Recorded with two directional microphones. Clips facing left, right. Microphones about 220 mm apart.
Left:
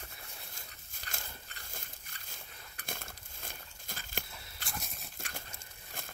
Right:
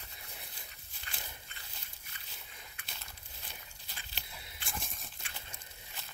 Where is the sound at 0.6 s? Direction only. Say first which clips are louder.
Left 2 dB; 45° left (ahead or behind).